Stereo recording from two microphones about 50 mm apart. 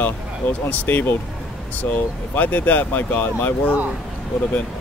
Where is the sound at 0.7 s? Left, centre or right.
Left.